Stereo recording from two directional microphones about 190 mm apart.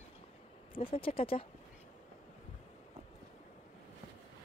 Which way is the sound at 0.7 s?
30° left (ahead or behind).